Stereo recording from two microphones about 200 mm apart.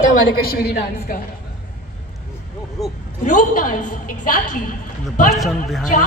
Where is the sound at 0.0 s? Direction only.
50° left (ahead or behind).